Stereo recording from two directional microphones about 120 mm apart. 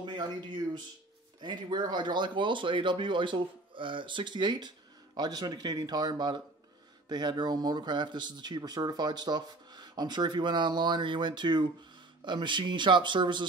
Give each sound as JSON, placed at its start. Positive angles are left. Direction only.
{"t": 0.0, "sound": "speech", "side_deg": -40}